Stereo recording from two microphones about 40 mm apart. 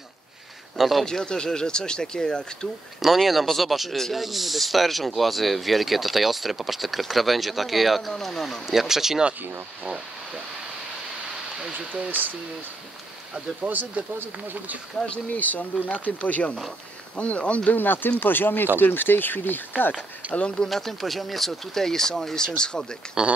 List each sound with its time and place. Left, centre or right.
0.7 s speech: centre
1.0 s speech: centre
3.0 s speech: centre
3.9 s speech: centre
4.2 s speech: centre
8.6 s speech: centre
11.7 s speech: right
13.6 s speech: right
15.3 s speech: left
17.6 s speech: left
20.3 s speech: left
20.6 s speech: centre
23.2 s speech: centre